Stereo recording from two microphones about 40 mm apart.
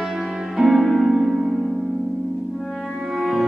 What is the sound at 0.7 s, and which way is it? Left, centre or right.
Music, centre.